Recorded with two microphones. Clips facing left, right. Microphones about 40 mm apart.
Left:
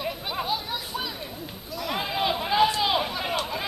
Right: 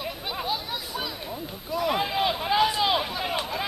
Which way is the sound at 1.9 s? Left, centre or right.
Centre.